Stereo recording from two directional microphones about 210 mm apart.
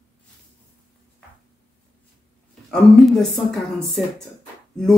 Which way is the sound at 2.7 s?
Centre (ahead or behind).